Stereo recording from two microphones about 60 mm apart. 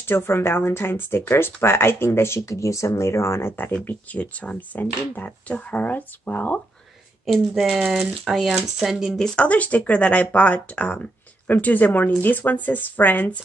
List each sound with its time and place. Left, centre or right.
0.0 s speech: left
3.7 s speech: left
7.2 s speech: centre
9.2 s speech: centre